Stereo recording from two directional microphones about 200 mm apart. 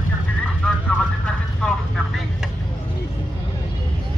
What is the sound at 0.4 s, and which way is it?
Vehicle, 5° left (ahead or behind).